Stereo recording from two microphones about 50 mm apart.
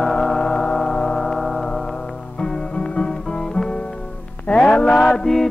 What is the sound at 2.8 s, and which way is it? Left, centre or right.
Guitar, centre.